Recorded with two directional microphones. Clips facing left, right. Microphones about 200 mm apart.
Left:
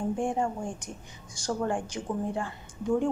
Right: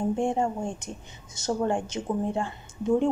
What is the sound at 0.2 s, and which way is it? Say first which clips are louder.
Speech: right 3 dB; 25° right (ahead or behind).